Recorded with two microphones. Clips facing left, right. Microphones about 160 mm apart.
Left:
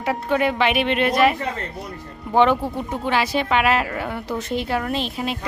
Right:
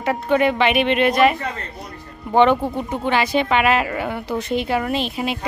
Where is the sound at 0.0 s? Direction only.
Centre (ahead or behind).